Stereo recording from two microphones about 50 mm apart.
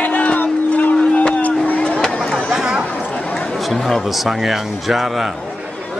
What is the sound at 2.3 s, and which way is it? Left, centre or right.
Chatter, centre.